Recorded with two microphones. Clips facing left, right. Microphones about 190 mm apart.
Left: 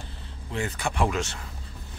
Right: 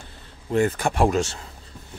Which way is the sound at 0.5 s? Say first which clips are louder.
Right 9 dB; 50° right (ahead or behind).